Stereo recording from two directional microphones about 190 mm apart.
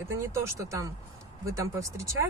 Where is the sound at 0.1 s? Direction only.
15° right (ahead or behind).